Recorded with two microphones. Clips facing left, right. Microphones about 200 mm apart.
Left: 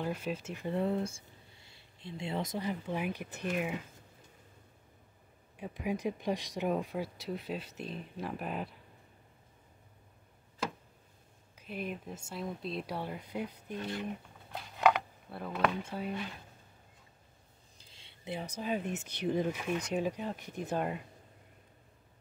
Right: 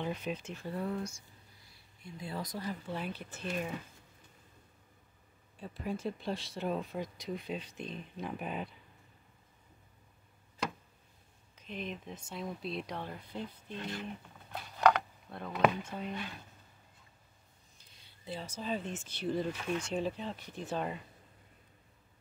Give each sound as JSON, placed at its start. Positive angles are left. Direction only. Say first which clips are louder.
{"t": 0.0, "sound": "speech", "louder": "left 1 dB", "side_deg": 5}
{"t": 0.7, "sound": "speech", "louder": "left 5 dB", "side_deg": 25}
{"t": 1.6, "sound": "a sound", "louder": "left 3 dB", "side_deg": 25}
{"t": 2.1, "sound": "speech", "louder": "left 4 dB", "side_deg": 25}
{"t": 5.6, "sound": "speech", "louder": "left 3 dB", "side_deg": 15}
{"t": 11.5, "sound": "speech", "louder": "left 2 dB", "side_deg": 10}
{"t": 14.5, "sound": "a sound", "louder": "even", "side_deg": 5}
{"t": 18.2, "sound": "speech", "louder": "left 2 dB", "side_deg": 15}